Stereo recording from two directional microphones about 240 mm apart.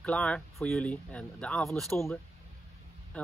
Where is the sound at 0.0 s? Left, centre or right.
Centre.